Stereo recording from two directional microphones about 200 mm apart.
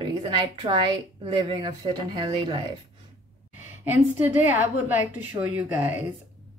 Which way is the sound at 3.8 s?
10° right (ahead or behind).